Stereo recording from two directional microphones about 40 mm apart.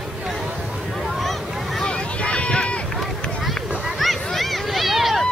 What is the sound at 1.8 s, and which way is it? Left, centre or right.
Boat, left.